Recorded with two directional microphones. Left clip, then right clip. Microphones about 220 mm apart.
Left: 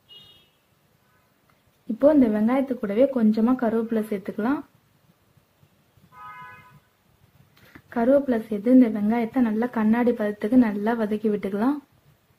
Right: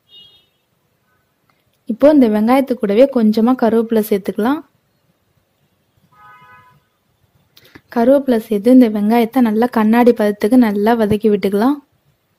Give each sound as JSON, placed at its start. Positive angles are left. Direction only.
{"t": 2.0, "sound": "a woman's voice", "side_deg": -40}
{"t": 7.7, "sound": "a woman's voice", "side_deg": -45}